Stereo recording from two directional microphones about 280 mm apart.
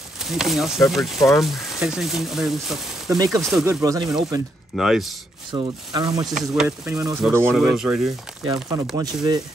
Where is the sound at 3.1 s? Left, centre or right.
Centre.